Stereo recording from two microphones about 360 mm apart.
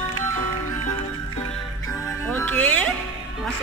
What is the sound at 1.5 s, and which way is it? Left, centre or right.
Music, centre.